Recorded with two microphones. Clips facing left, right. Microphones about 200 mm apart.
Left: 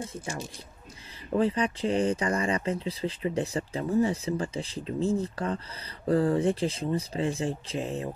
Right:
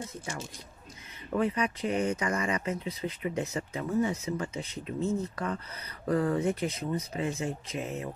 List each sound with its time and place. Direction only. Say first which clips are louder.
1.3 s speech: left 3 dB; 30° left (ahead or behind)